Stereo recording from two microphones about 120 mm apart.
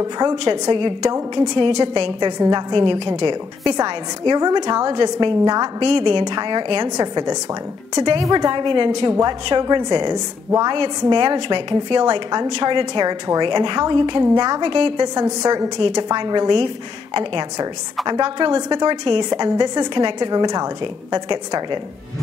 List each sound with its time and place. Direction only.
0.0 s a woman's voice: 35° right (ahead or behind)